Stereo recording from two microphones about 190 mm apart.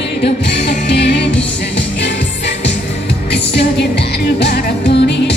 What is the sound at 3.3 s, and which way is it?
Music, 65° left (ahead or behind).